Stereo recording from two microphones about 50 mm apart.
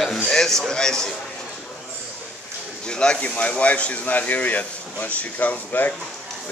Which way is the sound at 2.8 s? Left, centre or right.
Centre.